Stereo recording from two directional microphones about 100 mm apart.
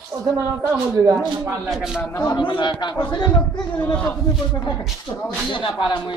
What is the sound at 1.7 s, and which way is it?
Speech, 5° right (ahead or behind).